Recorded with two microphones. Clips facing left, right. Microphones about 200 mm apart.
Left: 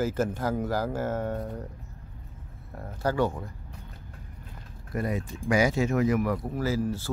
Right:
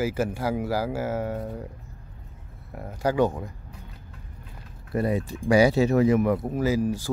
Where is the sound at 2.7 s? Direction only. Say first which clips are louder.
Right 3 dB; 15° right (ahead or behind).